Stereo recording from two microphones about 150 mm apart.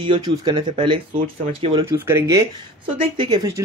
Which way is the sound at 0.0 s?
30° right (ahead or behind).